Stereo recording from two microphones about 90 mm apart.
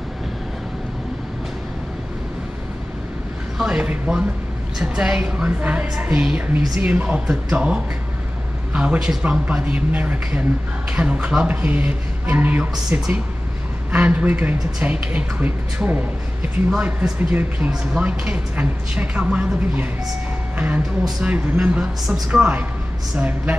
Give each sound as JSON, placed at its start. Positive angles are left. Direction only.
{"t": 3.5, "sound": "a woman's voice", "side_deg": -10}